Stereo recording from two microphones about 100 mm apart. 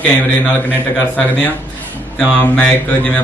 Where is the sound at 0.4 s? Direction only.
15° left (ahead or behind).